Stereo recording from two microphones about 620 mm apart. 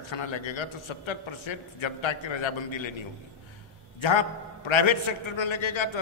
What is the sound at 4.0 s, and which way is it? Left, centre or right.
A man's voice, left.